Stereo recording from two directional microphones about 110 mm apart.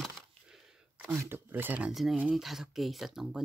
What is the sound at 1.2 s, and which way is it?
Speech, 20° right (ahead or behind).